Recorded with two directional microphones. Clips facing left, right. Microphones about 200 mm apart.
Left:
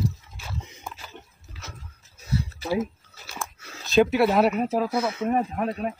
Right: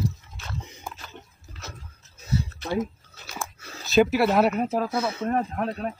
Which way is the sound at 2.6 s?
5° left (ahead or behind).